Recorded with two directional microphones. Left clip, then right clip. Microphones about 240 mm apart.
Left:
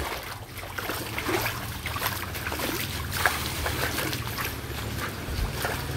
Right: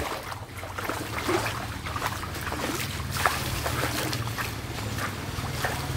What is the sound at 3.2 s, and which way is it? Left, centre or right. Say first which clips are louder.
Boat: even; left.